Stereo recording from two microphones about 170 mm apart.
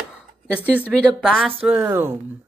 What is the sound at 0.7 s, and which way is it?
Speech, 10° right (ahead or behind).